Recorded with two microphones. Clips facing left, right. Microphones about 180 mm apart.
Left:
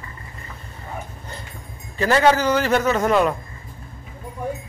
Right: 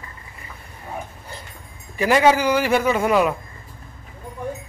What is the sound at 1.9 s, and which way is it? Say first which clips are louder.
A man's voice: right 1 dB; 10° right (ahead or behind).